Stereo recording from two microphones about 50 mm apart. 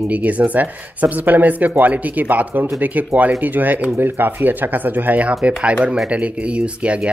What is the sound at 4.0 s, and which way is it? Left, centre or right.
Speech, right.